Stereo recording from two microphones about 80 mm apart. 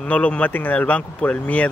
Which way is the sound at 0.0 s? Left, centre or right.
Centre.